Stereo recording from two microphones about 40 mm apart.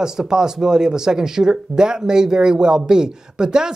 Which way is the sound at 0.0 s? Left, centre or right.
Centre.